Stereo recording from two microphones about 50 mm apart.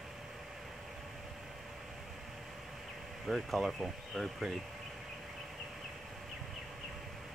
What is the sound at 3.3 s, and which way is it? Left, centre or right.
Speech, centre.